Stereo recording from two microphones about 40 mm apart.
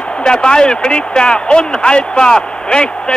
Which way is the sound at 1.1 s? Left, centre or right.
Left.